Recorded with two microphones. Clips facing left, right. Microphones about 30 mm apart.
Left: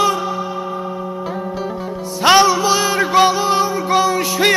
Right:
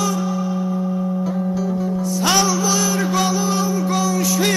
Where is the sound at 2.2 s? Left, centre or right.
Left.